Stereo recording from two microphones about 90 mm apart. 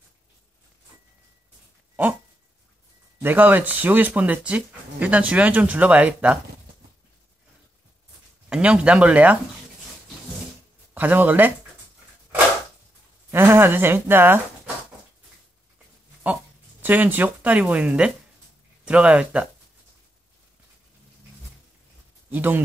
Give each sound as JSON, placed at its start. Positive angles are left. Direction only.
{"t": 3.2, "sound": "speech", "side_deg": -20}
{"t": 8.5, "sound": "speech", "side_deg": -15}
{"t": 11.0, "sound": "speech", "side_deg": -20}
{"t": 13.3, "sound": "speech", "side_deg": -25}
{"t": 16.8, "sound": "speech", "side_deg": -20}
{"t": 22.3, "sound": "speech", "side_deg": -20}